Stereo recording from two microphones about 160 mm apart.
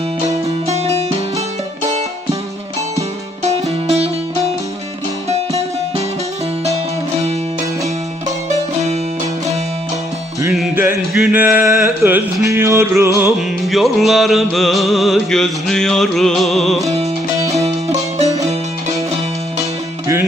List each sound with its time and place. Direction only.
0.7 s music: 40° right (ahead or behind)
10.8 s a sound: 15° right (ahead or behind)
13.7 s music: centre (ahead or behind)
17.6 s music: 40° right (ahead or behind)